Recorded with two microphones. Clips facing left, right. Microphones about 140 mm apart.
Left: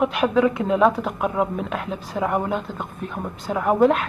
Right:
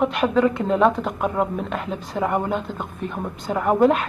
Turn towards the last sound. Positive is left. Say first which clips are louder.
# even
turn(degrees=0)  # may be behind; listen again after turning